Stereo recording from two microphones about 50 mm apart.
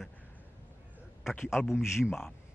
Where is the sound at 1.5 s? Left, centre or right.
Centre.